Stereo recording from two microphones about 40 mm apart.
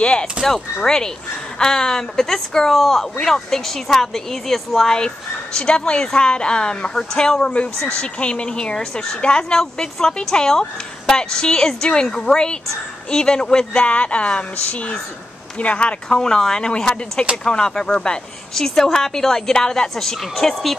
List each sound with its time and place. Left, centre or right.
0.0 s speech: left
0.8 s speech: centre
13.8 s speech: left
16.1 s speech: centre
18.5 s speech: centre